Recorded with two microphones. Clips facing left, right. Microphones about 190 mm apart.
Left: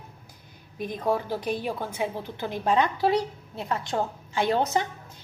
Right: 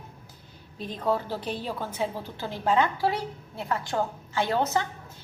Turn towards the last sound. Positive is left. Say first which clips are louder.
# left 1 dB
turn(degrees=20)  # may be behind; listen again after turning